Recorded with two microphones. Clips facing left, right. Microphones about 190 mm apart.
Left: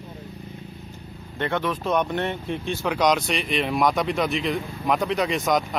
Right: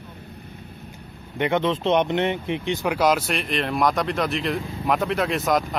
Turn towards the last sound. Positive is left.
turn(degrees=0)  # may be behind; listen again after turning